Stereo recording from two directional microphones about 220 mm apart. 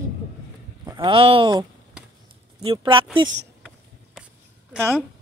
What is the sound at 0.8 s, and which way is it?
Speech, 20° right (ahead or behind).